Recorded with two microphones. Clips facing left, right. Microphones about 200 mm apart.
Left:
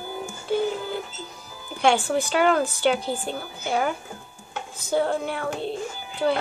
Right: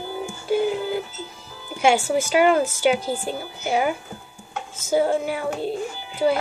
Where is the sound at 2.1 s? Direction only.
Centre (ahead or behind).